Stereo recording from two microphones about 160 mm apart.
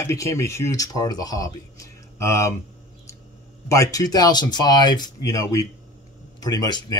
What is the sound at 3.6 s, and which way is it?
Speech, 20° left (ahead or behind).